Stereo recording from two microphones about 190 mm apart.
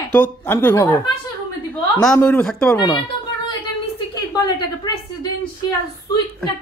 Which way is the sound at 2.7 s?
20° left (ahead or behind).